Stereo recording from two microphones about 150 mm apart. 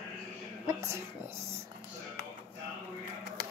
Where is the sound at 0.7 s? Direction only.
20° right (ahead or behind).